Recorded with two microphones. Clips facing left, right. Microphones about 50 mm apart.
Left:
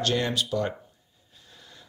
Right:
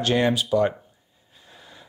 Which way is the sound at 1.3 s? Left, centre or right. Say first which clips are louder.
Right 4 dB; centre.